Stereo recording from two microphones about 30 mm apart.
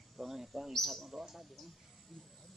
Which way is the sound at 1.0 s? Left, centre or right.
Centre.